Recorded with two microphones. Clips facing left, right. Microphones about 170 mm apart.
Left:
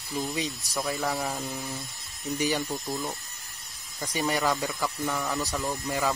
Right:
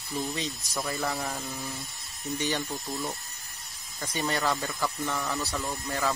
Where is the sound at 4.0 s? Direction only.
15° left (ahead or behind).